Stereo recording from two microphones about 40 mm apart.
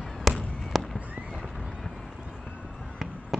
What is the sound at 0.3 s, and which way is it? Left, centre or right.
Fireworks, centre.